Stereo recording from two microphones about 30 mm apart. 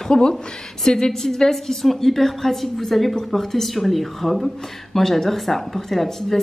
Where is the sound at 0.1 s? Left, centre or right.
Centre.